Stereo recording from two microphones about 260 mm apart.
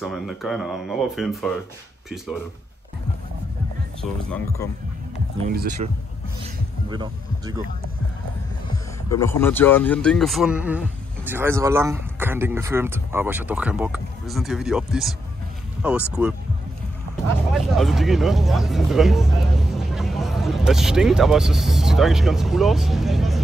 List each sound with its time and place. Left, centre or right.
0.0 s speech: centre
5.5 s speech: right
6.9 s speech: centre
9.1 s speech: centre
17.5 s speech: centre